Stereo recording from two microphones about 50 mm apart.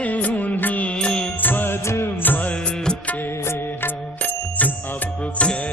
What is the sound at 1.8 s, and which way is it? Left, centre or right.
Music, left.